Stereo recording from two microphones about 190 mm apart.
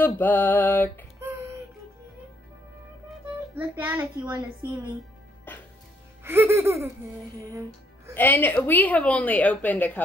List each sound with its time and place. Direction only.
0.0 s a woman's voice: 10° left (ahead or behind)
3.5 s a child's voice: 10° right (ahead or behind)
5.5 s music: 10° left (ahead or behind)
6.2 s a child's voice: 15° right (ahead or behind)
8.1 s a woman's voice: 10° left (ahead or behind)